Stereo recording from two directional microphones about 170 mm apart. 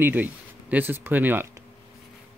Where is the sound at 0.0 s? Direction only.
10° right (ahead or behind).